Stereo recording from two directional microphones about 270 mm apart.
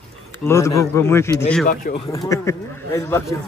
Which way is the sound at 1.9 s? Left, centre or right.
Left.